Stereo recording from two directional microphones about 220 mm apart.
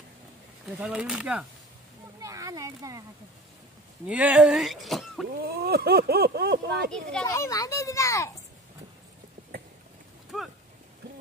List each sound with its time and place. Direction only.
0.7 s speech: 5° right (ahead or behind)
2.1 s a sound: 15° right (ahead or behind)
4.1 s speech: 5° right (ahead or behind)
5.3 s speech: 45° right (ahead or behind)
6.9 s speech: 5° left (ahead or behind)
7.2 s a child's voice: 15° left (ahead or behind)
10.3 s speech: centre (ahead or behind)